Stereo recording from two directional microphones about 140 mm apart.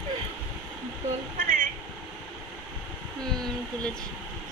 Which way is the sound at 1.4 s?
75° right (ahead or behind).